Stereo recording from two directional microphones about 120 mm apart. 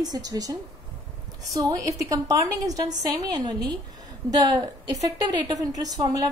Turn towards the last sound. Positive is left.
turn(degrees=-35)  # may be behind; listen again after turning